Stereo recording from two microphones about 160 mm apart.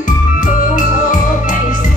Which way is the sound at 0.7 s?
55° left (ahead or behind).